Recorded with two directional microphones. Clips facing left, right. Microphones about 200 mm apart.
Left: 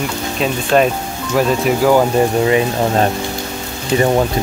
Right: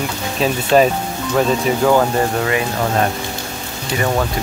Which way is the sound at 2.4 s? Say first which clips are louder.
Left 5 dB; 25° left (ahead or behind).